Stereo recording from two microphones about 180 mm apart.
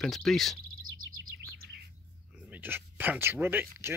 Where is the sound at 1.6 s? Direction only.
65° right (ahead or behind).